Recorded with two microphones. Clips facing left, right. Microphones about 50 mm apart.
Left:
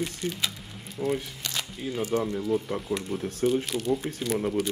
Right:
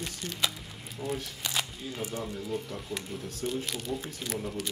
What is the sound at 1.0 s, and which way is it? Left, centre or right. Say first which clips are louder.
Speech: left 7 dB; centre.